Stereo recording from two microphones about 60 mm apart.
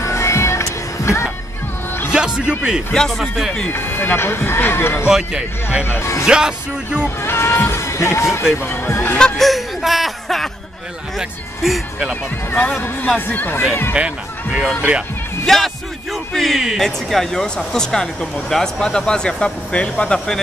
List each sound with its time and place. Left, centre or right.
0.0 s music: left
2.0 s a man's voice: centre
2.9 s a man's voice: centre
3.2 s speech: centre
3.7 s speech: left
5.1 s music: centre
7.2 s speech: left
8.5 s speech: left
9.4 s chuckle: centre
11.1 s speech: centre
12.5 s speech: left
13.3 s speech: left
13.9 s speech: centre
15.4 s a man's voice: centre